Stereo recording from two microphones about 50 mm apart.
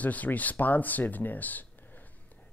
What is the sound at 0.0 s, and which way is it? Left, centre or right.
Speech, left.